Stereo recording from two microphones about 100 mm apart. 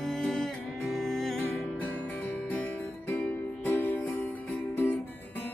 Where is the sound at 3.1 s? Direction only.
15° left (ahead or behind).